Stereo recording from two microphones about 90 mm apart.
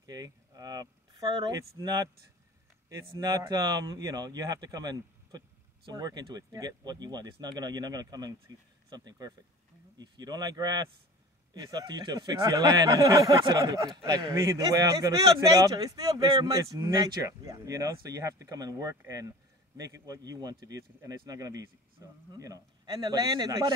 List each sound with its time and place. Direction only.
0.0 s speech: 45° right (ahead or behind)
3.2 s speech: 50° right (ahead or behind)